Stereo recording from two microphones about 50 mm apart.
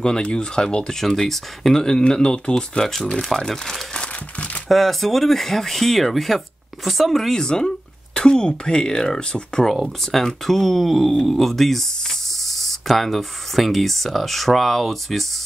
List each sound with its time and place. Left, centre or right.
0.0 s speech: centre
4.6 s speech: centre
7.4 s speech: centre